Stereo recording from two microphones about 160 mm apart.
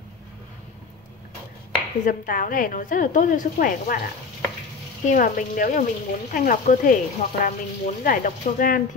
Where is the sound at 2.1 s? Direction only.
55° left (ahead or behind).